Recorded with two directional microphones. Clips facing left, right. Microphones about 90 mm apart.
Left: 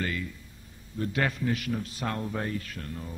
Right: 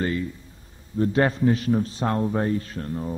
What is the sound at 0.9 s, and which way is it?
A man's voice, 30° right (ahead or behind).